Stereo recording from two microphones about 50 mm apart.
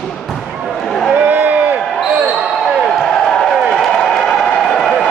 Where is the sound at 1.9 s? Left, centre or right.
Centre.